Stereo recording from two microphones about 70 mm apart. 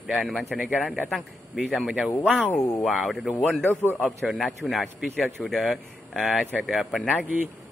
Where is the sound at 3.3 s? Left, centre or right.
Left.